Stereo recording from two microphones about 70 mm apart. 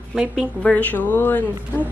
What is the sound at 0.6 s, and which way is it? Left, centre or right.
Speech, left.